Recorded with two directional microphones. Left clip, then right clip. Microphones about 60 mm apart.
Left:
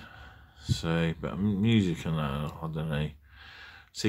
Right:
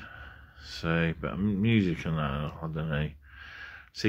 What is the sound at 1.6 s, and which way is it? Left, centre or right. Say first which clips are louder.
Speech: even; left.